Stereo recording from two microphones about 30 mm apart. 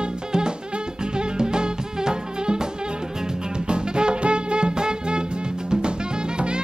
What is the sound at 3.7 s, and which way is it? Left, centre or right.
Music, right.